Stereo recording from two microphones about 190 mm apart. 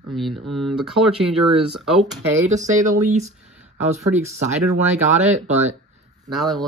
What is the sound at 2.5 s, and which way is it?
Speech, 15° right (ahead or behind).